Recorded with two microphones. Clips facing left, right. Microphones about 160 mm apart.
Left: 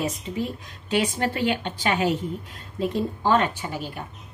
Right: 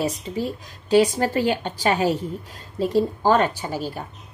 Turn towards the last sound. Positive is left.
turn(degrees=-35)  # may be behind; listen again after turning